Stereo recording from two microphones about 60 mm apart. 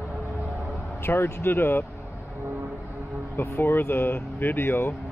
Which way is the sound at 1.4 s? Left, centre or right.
Left.